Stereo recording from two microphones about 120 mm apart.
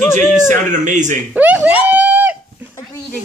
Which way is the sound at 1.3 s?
15° right (ahead or behind).